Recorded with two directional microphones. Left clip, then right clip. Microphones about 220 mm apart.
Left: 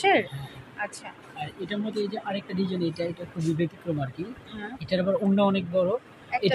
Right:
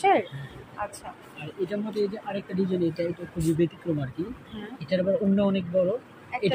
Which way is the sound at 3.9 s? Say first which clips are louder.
Right 1 dB; 25° left (ahead or behind).